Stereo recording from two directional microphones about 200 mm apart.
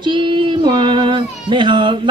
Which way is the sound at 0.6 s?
25° right (ahead or behind).